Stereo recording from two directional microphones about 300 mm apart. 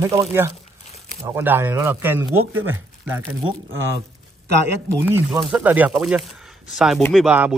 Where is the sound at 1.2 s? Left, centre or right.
Centre.